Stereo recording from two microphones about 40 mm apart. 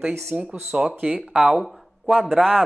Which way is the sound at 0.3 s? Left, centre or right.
Right.